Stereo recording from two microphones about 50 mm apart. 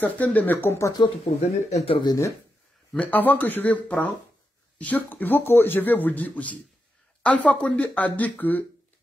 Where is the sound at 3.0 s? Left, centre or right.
Left.